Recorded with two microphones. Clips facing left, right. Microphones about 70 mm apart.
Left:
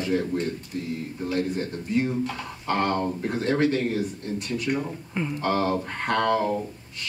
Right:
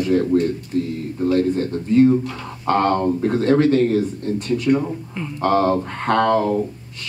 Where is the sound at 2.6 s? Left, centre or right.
Right.